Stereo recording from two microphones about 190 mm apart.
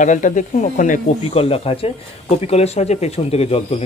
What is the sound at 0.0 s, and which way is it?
Speech, 40° left (ahead or behind).